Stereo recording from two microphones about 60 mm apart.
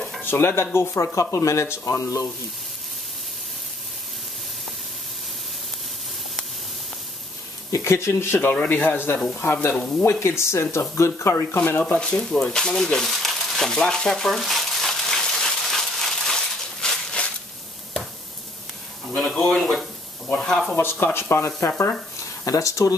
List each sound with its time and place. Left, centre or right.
0.2 s speech: left
1.3 s speech: left
7.7 s speech: left
8.5 s a man's voice: left
11.5 s a man's voice: left
12.0 s a sound: centre
19.3 s speech: centre
20.7 s speech: left
22.2 s speech: left